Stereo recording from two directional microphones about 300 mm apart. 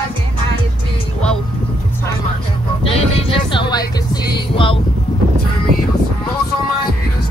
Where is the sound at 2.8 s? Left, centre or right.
Centre.